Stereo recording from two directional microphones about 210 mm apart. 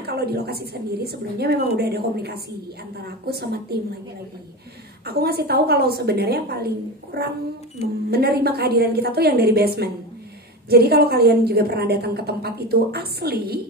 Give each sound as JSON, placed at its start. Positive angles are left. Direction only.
{"t": 0.0, "sound": "a woman's voice", "side_deg": -50}
{"t": 5.0, "sound": "a woman's voice", "side_deg": -50}